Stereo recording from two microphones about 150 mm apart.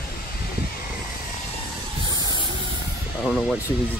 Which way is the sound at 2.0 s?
25° left (ahead or behind).